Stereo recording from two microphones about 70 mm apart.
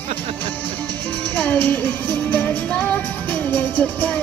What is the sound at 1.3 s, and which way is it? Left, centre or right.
Music, left.